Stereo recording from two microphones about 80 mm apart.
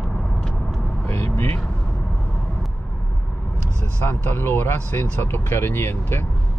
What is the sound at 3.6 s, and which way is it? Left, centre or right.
Speech, left.